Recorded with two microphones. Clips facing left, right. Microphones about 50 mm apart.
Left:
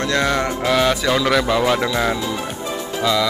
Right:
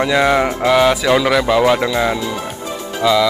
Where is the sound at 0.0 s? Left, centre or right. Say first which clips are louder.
Right 5 dB; centre.